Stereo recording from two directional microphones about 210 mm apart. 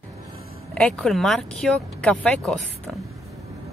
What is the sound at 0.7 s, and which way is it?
Speech, 5° left (ahead or behind).